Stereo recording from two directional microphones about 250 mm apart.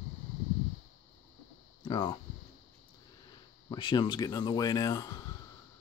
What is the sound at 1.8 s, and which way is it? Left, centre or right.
Speech, centre.